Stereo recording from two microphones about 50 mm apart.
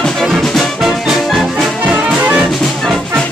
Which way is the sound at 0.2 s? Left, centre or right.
Centre.